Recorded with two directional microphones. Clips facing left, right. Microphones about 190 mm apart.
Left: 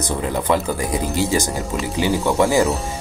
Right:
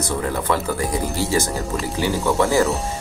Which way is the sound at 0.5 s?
20° left (ahead or behind).